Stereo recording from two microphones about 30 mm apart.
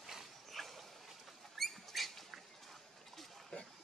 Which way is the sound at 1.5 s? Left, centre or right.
Centre.